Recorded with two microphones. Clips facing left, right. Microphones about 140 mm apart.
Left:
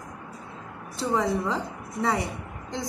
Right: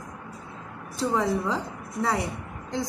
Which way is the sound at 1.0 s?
Centre (ahead or behind).